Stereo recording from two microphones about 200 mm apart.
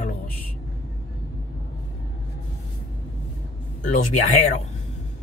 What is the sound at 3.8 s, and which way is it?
Speech, 40° left (ahead or behind).